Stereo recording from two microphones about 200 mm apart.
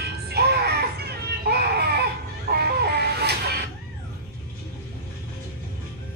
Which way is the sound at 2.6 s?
55° right (ahead or behind).